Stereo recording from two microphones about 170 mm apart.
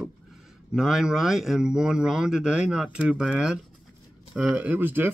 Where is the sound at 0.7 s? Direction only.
5° right (ahead or behind).